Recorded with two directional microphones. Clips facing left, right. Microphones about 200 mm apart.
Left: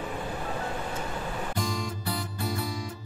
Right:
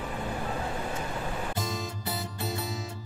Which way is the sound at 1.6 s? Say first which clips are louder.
Left 2 dB; 25° right (ahead or behind).